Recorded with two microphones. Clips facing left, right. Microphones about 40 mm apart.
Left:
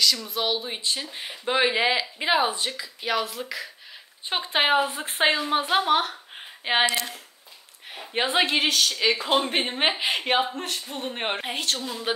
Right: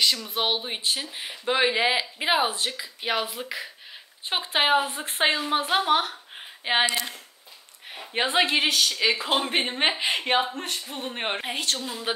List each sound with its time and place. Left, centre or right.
0.0 s speech: right
1.1 s speech: centre
2.8 s speech: centre
4.3 s speech: centre